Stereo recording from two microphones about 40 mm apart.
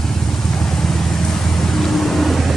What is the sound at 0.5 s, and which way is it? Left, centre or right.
Vehicle, centre.